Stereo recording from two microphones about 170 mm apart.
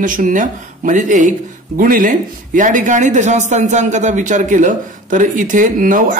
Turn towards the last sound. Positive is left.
turn(degrees=-55)  # may be behind; listen again after turning